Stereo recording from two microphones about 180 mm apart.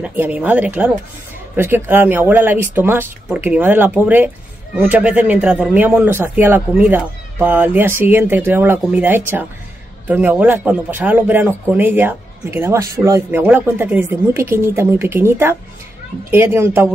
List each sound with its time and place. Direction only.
0.0 s a man's voice: 10° right (ahead or behind)